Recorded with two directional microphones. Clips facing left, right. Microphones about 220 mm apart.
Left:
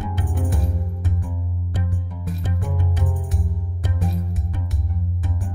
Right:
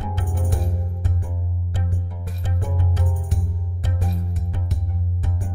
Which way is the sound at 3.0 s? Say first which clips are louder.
Left 1 dB; centre (ahead or behind).